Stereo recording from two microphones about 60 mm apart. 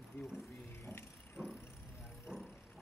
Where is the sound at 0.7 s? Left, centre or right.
Left.